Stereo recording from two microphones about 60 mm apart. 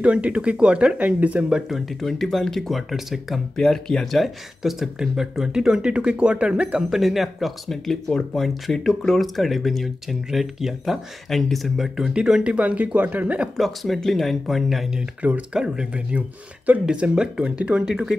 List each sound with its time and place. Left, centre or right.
0.0 s speech: centre
1.7 s speech: centre
3.5 s speech: centre
6.9 s speech: centre; by 13.5 s right
13.6 s speech: centre